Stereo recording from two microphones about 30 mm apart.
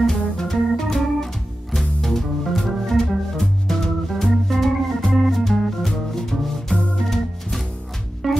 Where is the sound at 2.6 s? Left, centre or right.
Centre.